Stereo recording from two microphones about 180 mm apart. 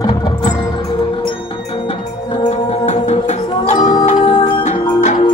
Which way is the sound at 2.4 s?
40° left (ahead or behind).